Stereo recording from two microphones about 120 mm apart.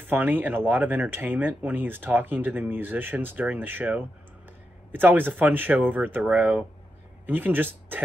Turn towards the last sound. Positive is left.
turn(degrees=-15)  # may be behind; listen again after turning